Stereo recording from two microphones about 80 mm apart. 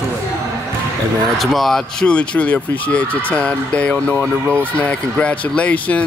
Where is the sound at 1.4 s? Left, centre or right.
Centre.